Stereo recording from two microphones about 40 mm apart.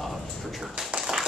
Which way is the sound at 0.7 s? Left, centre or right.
Centre.